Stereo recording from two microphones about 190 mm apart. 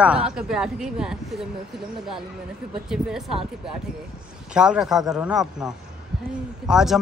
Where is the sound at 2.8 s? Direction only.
5° right (ahead or behind).